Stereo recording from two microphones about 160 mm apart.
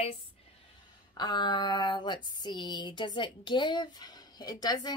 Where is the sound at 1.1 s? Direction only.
25° left (ahead or behind).